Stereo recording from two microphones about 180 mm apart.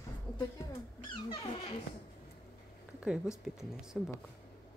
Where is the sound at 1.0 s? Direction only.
30° left (ahead or behind).